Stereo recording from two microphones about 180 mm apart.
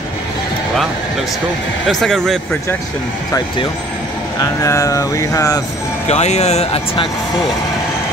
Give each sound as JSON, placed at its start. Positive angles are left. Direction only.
{"t": 1.9, "sound": "speech", "side_deg": 0}
{"t": 4.4, "sound": "speech", "side_deg": 15}
{"t": 6.0, "sound": "speech", "side_deg": 35}